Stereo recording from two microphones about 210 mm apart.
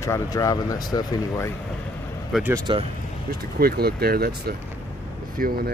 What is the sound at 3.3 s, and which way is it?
Speech, 45° right (ahead or behind).